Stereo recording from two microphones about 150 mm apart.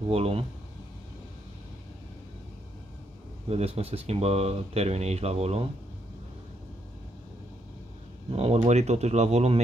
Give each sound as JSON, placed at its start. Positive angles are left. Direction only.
{"t": 0.1, "sound": "speech", "side_deg": -40}
{"t": 3.4, "sound": "speech", "side_deg": -45}
{"t": 8.3, "sound": "speech", "side_deg": -45}